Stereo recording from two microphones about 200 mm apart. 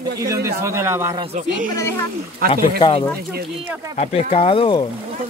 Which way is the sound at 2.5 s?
25° left (ahead or behind).